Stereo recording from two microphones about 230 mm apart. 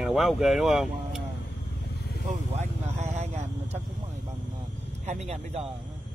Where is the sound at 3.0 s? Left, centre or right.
Right.